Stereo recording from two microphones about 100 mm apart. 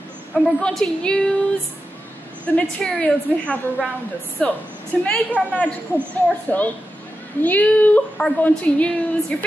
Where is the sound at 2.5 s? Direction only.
15° left (ahead or behind).